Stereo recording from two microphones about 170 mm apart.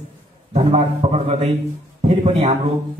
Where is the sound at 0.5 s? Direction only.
35° right (ahead or behind).